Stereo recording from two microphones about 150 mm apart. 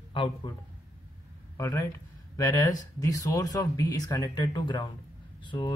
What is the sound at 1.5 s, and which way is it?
Speech, 20° left (ahead or behind).